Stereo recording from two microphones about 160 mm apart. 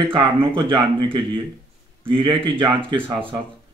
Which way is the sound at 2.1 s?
30° right (ahead or behind).